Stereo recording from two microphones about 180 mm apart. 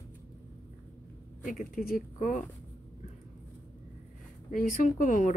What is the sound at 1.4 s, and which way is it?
Speech, 45° left (ahead or behind).